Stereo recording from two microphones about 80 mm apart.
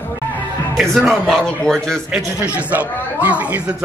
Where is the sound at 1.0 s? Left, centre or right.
Centre.